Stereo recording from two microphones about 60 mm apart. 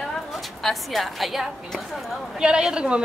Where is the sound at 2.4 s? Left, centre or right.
Centre.